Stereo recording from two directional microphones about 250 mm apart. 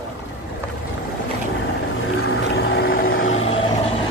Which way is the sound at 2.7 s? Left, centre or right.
Left.